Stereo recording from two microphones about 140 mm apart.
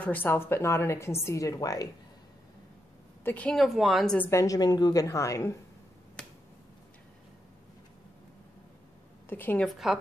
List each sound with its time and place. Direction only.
0.0 s a woman's voice: 10° left (ahead or behind)
3.3 s a woman's voice: 10° left (ahead or behind)
3.6 s a woman's voice: centre (ahead or behind)
4.3 s a woman's voice: 25° left (ahead or behind)
9.3 s a woman's voice: 15° left (ahead or behind)
9.7 s a woman's voice: centre (ahead or behind)